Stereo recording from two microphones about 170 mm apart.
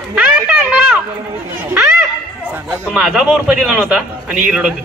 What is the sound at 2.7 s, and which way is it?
A man's voice, 5° right (ahead or behind).